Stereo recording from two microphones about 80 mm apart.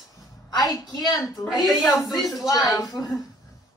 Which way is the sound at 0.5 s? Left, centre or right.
Left.